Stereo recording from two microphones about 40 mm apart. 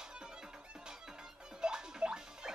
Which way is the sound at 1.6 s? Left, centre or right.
Centre.